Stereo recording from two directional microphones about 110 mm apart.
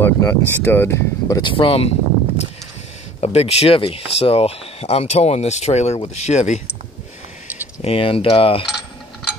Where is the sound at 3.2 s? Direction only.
70° left (ahead or behind); by 6.6 s 90° left.